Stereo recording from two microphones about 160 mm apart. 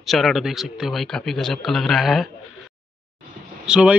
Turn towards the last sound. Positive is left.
turn(degrees=-5)  # may be behind; listen again after turning